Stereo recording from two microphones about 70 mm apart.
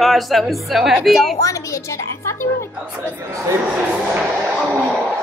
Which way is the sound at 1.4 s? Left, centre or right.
Left.